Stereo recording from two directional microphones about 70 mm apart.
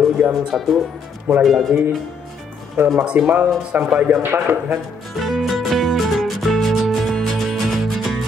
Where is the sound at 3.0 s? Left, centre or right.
Centre.